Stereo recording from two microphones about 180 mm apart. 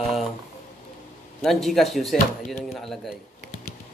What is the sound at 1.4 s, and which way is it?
A man's voice, centre (ahead or behind).